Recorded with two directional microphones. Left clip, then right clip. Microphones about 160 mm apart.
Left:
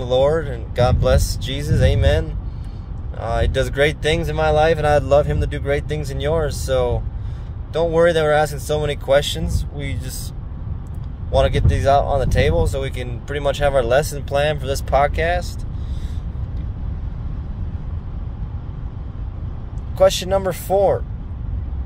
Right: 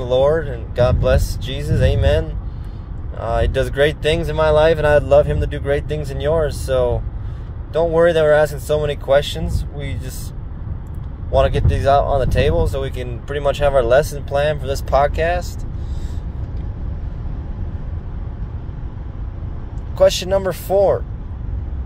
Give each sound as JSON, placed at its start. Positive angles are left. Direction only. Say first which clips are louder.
{"t": 0.4, "sound": "speech", "louder": "right 2 dB", "side_deg": 20}
{"t": 11.3, "sound": "speech", "louder": "right 2 dB", "side_deg": 10}
{"t": 14.1, "sound": "speech", "louder": "right 1 dB", "side_deg": 25}
{"t": 20.0, "sound": "speech", "louder": "right 1 dB", "side_deg": 15}